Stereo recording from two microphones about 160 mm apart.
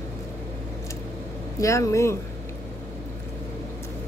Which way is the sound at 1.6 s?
20° left (ahead or behind).